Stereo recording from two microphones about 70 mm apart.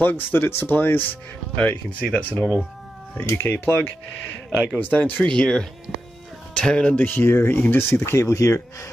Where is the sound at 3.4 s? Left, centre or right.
Left.